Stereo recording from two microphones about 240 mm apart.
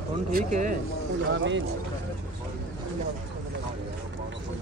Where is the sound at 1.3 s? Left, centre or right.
Right.